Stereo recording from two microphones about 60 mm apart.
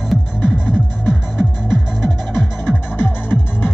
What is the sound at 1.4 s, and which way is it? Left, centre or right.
Music, centre.